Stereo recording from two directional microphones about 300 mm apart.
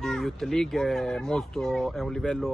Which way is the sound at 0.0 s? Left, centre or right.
Centre.